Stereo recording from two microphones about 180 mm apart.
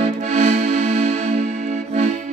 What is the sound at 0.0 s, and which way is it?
Music, 40° right (ahead or behind).